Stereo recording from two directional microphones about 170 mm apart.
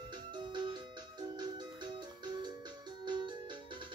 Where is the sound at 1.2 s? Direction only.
25° right (ahead or behind).